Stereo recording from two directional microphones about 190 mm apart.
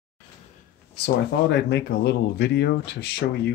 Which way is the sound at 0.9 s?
60° left (ahead or behind).